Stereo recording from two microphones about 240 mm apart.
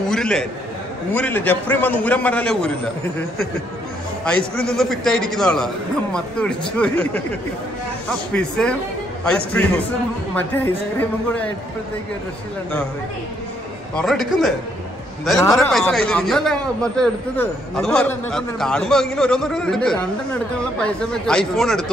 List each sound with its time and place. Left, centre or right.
0.1 s a sound: centre
1.1 s a man's voice: centre
4.2 s a man's voice: centre
8.3 s a man's voice: centre
10.3 s a man's voice: centre
13.9 s a man's voice: centre
15.5 s a man's voice: centre